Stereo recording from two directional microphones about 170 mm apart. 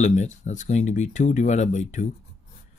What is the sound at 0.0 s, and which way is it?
Speech, 45° left (ahead or behind).